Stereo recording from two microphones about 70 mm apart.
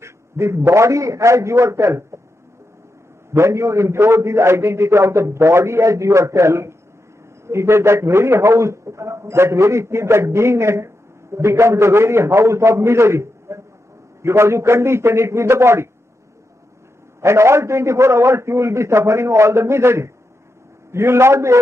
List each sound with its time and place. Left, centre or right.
0.0 s a man's voice: right
3.3 s a man's voice: right
17.2 s a man's voice: right